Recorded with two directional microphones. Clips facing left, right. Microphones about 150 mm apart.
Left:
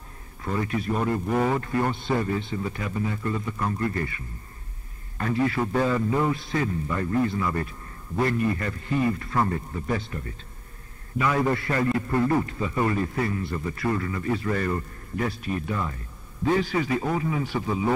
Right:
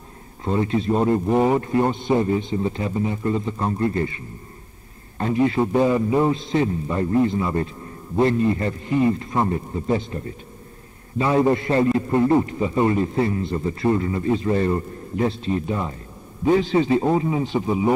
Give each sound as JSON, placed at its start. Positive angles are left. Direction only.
{"t": 0.4, "sound": "a man's voice", "side_deg": -25}